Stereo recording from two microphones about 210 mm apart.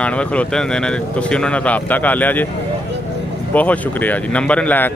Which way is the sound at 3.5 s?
5° left (ahead or behind).